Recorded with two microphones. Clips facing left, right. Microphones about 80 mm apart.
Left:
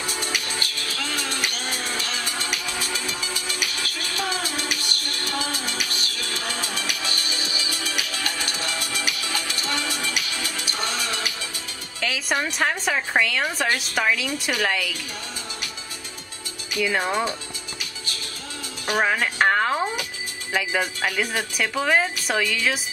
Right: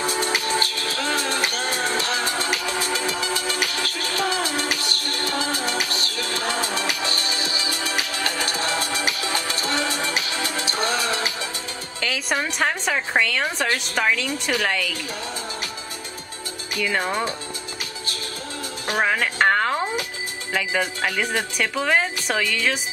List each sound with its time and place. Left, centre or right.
0.0 s music: right
3.2 s music: right
3.4 s music: right
12.0 s a woman's voice: centre
16.7 s speech: centre
18.9 s music: centre
20.5 s speech: centre